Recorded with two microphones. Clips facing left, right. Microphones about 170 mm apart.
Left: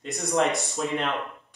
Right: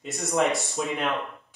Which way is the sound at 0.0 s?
Centre (ahead or behind).